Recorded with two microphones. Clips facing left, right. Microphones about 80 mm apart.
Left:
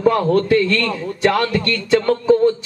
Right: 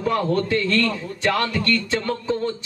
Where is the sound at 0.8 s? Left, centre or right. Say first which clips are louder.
Left 4 dB; left.